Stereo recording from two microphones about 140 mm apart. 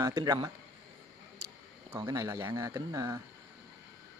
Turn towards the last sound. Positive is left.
turn(degrees=-20)  # may be behind; listen again after turning